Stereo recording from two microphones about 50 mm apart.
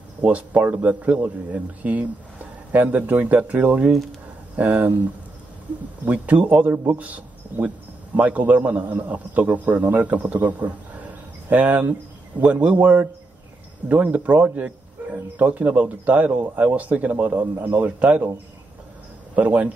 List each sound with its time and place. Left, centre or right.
0.2 s a man's voice: right
6.2 s a man's voice: right
17.8 s a man's voice: right
19.3 s a man's voice: right